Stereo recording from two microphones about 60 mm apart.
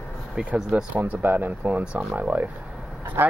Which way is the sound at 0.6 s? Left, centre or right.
Centre.